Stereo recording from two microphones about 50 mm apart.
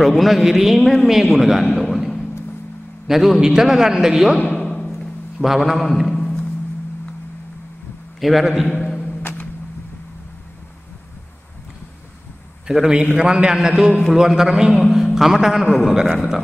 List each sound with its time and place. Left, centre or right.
0.0 s a man's voice: centre
1.8 s a sound: centre
3.1 s a man's voice: centre
4.6 s timpani: centre
5.4 s a man's voice: centre
6.1 s music: left
8.2 s a man's voice: centre
12.6 s a man's voice: centre